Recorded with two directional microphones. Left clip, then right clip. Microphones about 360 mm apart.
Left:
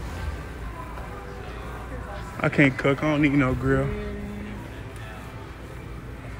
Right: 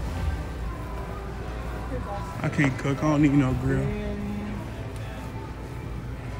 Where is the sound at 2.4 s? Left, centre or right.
Centre.